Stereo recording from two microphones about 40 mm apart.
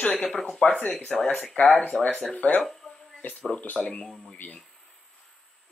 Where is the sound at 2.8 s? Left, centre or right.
Centre.